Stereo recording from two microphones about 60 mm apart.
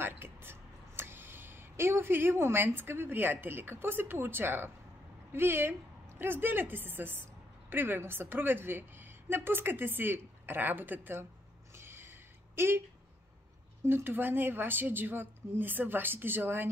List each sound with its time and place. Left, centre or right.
0.0 s a woman's voice: right
11.7 s a sound: right
12.5 s speech: right
13.8 s a woman's voice: right